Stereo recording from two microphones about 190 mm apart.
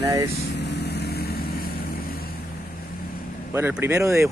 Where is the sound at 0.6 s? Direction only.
60° left (ahead or behind).